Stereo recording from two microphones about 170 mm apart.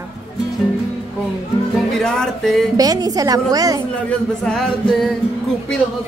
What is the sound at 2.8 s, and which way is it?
A woman's voice, 20° right (ahead or behind).